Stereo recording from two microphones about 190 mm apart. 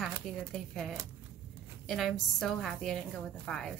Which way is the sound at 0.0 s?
Centre (ahead or behind).